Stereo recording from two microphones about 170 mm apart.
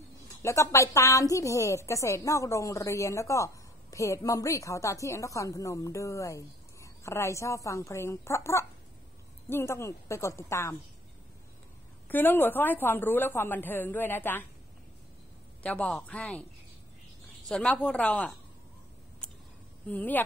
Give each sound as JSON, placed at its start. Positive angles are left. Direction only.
{"t": 0.4, "sound": "a woman's voice", "side_deg": 15}
{"t": 12.1, "sound": "a woman's voice", "side_deg": 10}
{"t": 15.6, "sound": "a woman's voice", "side_deg": 5}
{"t": 17.5, "sound": "speech", "side_deg": 5}
{"t": 19.9, "sound": "a woman's voice", "side_deg": 10}